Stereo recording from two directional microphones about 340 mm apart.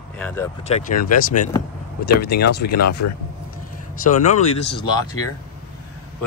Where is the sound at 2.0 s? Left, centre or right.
Left.